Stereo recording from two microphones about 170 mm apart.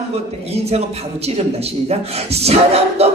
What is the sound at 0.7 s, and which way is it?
Speech, 40° right (ahead or behind).